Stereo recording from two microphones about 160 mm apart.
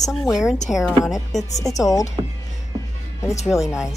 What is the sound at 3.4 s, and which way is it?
Speech, centre (ahead or behind).